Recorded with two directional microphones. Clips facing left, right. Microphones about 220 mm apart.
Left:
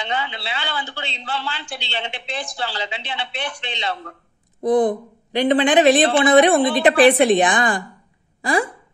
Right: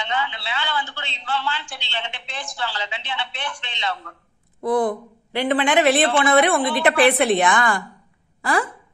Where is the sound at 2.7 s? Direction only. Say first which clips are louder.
Left 2 dB; 35° left (ahead or behind).